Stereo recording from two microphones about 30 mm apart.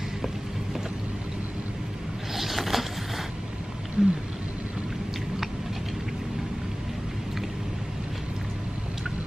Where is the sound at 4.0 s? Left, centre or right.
Centre.